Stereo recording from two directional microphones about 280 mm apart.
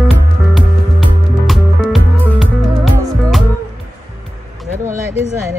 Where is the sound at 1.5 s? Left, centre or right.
Centre.